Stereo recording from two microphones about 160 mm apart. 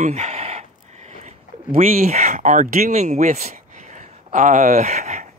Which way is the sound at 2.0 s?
45° right (ahead or behind).